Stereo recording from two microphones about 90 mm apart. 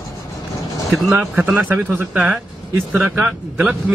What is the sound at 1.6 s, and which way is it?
Speech, 20° right (ahead or behind).